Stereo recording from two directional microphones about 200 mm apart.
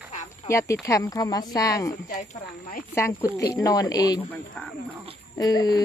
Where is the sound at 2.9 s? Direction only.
15° left (ahead or behind).